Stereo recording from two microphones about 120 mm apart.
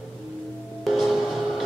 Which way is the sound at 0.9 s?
5° right (ahead or behind).